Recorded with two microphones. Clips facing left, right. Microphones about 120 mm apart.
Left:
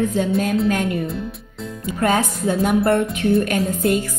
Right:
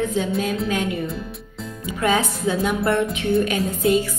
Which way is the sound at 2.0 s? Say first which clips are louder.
Left 2 dB; 45° left (ahead or behind).